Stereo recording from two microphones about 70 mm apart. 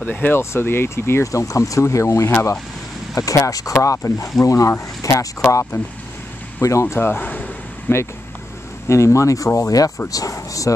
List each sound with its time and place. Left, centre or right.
0.0 s speech: left
0.4 s speech: left
1.3 s speech: left
6.6 s speech: left
7.0 s speech: left
8.8 s speech: left